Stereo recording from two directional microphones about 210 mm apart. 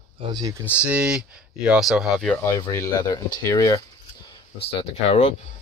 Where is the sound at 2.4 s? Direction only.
15° left (ahead or behind).